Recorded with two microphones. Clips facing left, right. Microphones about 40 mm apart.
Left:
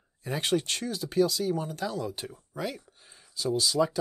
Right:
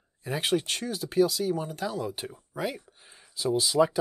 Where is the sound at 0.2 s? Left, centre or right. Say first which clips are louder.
Right 1 dB; centre.